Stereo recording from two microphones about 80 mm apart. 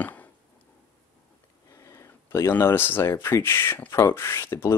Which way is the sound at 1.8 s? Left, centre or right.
Left.